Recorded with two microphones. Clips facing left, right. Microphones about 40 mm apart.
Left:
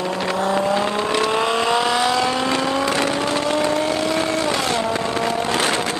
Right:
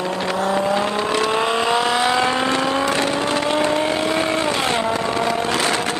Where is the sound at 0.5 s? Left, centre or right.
Centre.